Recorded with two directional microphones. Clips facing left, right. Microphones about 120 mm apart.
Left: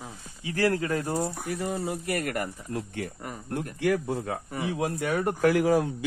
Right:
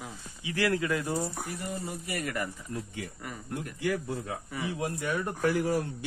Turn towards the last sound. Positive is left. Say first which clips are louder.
# left 5 dB
turn(degrees=90)